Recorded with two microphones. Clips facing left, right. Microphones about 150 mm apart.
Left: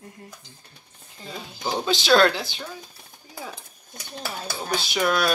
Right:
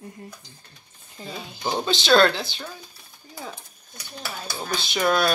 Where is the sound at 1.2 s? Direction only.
10° right (ahead or behind).